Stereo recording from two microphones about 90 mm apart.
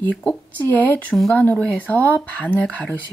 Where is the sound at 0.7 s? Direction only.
20° left (ahead or behind).